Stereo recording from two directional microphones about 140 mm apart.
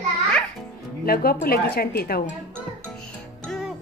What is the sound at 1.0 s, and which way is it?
A woman's voice, 90° left.